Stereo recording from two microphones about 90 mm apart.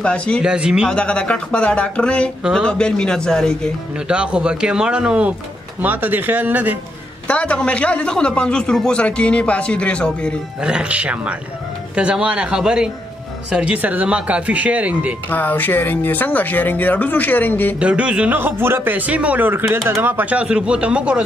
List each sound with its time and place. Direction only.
0.0 s a man's voice: 15° left (ahead or behind)
0.4 s speech: 10° right (ahead or behind)
0.8 s a man's voice: 10° left (ahead or behind)
4.1 s speech: 10° right (ahead or behind)
7.2 s a man's voice: 15° left (ahead or behind)
10.6 s speech: 10° right (ahead or behind)
15.2 s speech: 20° left (ahead or behind)
17.7 s speech: 15° right (ahead or behind)